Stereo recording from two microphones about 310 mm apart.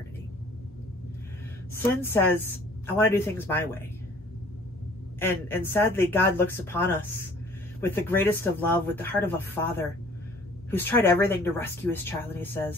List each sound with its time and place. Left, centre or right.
1.8 s speech: centre
5.2 s speech: centre